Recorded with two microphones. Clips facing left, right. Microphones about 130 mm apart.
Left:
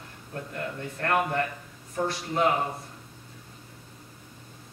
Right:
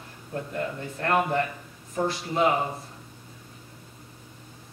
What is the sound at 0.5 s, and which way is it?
A man's voice, 5° right (ahead or behind).